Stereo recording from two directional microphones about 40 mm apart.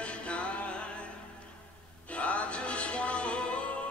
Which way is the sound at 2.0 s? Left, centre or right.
Left.